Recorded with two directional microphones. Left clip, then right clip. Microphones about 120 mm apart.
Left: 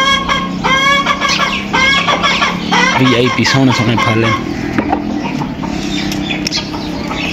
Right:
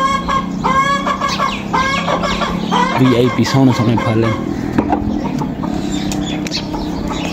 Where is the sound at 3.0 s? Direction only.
25° right (ahead or behind).